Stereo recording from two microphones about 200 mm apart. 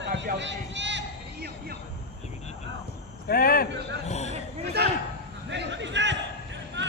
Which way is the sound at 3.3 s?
45° left (ahead or behind).